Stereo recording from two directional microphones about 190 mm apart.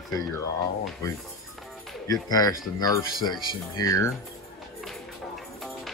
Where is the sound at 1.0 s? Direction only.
15° left (ahead or behind).